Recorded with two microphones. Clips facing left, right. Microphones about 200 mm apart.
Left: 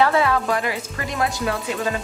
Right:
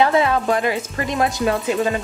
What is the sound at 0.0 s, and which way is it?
Speech, 20° right (ahead or behind).